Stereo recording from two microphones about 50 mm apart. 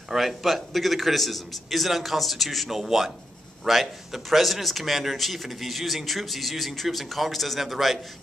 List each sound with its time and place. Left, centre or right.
0.1 s a man's voice: centre